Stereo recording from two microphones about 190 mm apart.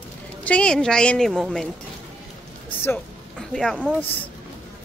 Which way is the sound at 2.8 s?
10° left (ahead or behind).